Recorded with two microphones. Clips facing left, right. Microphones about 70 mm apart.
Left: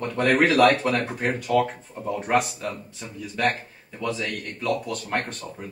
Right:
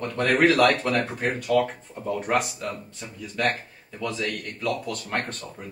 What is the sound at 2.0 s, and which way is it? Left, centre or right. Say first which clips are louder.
Speech: left 2 dB; centre.